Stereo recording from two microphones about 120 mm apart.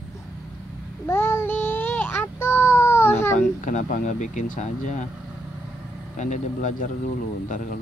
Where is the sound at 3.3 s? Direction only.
90° left.